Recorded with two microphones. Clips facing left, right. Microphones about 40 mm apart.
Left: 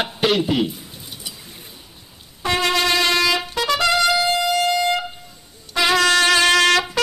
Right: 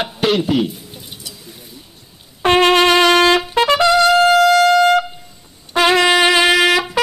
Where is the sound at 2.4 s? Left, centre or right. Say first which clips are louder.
Right 8 dB; right.